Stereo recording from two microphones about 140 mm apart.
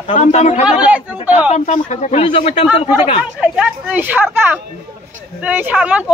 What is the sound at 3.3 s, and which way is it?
Speech, 5° right (ahead or behind).